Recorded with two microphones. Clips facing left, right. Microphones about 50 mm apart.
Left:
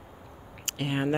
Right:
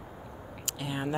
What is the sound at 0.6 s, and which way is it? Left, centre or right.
Speech, left.